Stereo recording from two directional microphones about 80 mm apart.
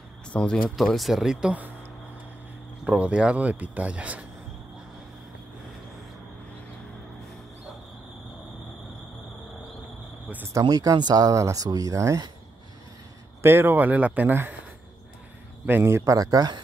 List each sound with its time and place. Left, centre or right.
0.3 s speech: centre
2.8 s speech: centre
10.6 s speech: right
11.3 s speech: right
13.4 s speech: right
15.6 s speech: right